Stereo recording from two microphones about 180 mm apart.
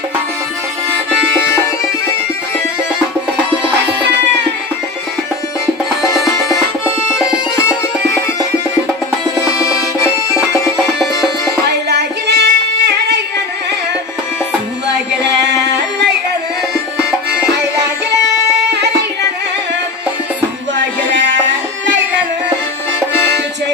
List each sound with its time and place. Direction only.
6.0 s music: 20° left (ahead or behind)
7.5 s bagpipes: 15° left (ahead or behind)
9.9 s music: 15° left (ahead or behind)
11.9 s music: 70° right (ahead or behind)
15.4 s singing: 70° right (ahead or behind)
18.2 s music: 70° right (ahead or behind)
20.7 s music: 90° right